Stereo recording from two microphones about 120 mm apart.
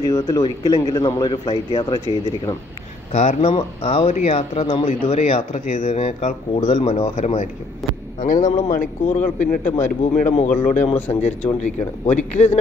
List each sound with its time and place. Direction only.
0.0 s speech: 30° left (ahead or behind)
3.1 s speech: 70° left (ahead or behind)
7.2 s a man's voice: 75° left (ahead or behind)
8.2 s speech: 90° left
11.1 s a man's voice: 75° left (ahead or behind)
11.6 s a man's voice: 85° left